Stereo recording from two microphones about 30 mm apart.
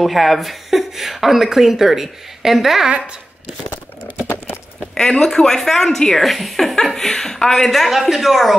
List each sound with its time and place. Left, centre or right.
0.0 s speech: centre
4.9 s speech: left
6.2 s a woman's voice: centre